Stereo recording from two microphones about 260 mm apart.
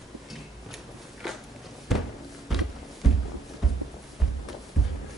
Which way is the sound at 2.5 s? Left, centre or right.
Centre.